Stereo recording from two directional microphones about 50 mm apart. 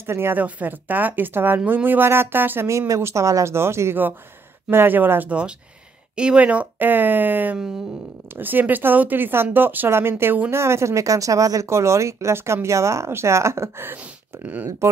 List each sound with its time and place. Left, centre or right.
0.0 s speech: right
0.4 s speech: right
2.9 s speech: right
4.6 s speech: right
6.1 s speech: right
7.5 s a sound: centre
8.4 s speech: right
9.8 s speech: right
10.5 s speech: right
14.4 s speech: right